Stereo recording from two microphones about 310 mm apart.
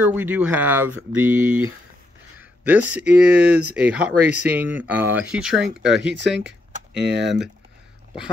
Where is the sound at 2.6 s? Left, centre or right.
Centre.